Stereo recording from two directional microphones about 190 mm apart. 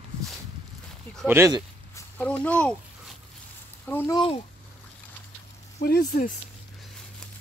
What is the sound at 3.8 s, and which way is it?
Speech, 10° left (ahead or behind).